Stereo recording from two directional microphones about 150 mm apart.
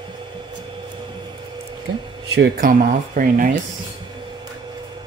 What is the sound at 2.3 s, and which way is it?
Speech, 80° right.